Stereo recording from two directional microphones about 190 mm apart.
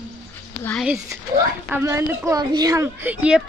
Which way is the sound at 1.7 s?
15° right (ahead or behind).